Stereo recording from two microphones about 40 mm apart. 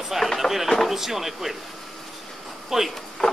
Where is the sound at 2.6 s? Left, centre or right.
Centre.